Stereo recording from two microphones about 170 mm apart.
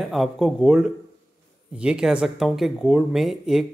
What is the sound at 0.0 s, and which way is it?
Speech, centre (ahead or behind).